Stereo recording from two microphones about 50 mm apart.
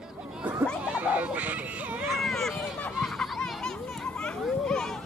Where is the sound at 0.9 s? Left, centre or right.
Right.